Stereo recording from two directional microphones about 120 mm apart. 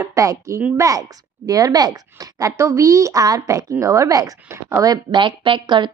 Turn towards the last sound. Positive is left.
turn(degrees=-40)  # may be behind; listen again after turning